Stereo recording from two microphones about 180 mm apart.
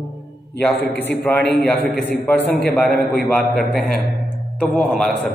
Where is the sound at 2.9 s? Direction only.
55° left (ahead or behind).